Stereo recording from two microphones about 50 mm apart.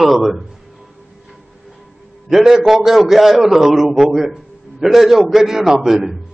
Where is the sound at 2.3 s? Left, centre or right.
Centre.